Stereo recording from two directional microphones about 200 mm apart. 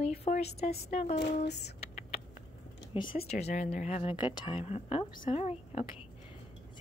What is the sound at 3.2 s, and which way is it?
A woman's voice, 30° left (ahead or behind).